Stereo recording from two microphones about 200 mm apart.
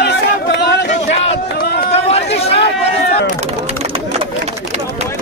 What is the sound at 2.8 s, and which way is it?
Chop, 30° left (ahead or behind).